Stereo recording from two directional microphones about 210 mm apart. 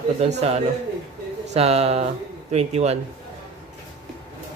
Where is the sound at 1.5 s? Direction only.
30° right (ahead or behind).